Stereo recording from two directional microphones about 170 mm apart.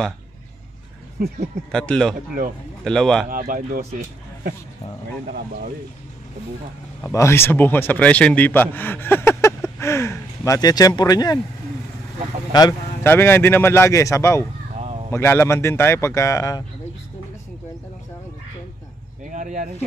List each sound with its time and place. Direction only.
1.7 s speech: 5° left (ahead or behind)
3.3 s speech: 55° right (ahead or behind)
7.0 s a man's voice: 15° left (ahead or behind)
12.5 s a man's voice: 25° left (ahead or behind)
13.0 s a man's voice: 15° left (ahead or behind)
14.8 s a sound: 40° right (ahead or behind)
15.0 s a man's voice: 15° left (ahead or behind)
19.3 s speech: 45° right (ahead or behind)